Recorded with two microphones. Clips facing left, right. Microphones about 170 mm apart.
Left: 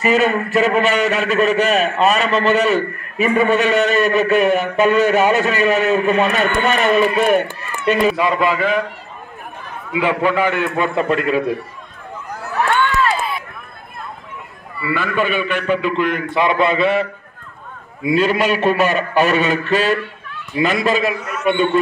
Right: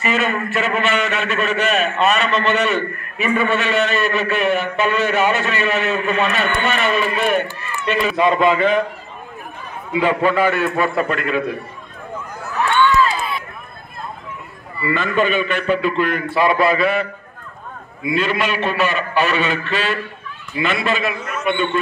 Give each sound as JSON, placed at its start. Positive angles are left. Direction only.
{"t": 0.0, "sound": "a man's voice", "side_deg": 40}
{"t": 8.2, "sound": "a man's voice", "side_deg": 5}
{"t": 9.9, "sound": "a man's voice", "side_deg": 15}
{"t": 14.8, "sound": "a man's voice", "side_deg": 5}
{"t": 18.1, "sound": "a man's voice", "side_deg": 40}